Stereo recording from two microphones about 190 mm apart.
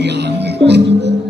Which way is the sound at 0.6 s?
65° right (ahead or behind).